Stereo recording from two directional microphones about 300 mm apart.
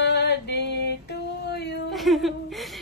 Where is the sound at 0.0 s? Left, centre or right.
Left.